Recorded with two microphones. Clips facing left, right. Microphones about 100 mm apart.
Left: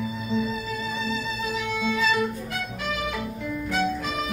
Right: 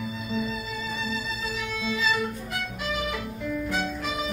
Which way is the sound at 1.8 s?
60° left (ahead or behind).